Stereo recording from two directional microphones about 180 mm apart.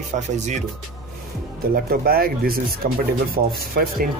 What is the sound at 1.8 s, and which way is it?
Speech, 55° right (ahead or behind).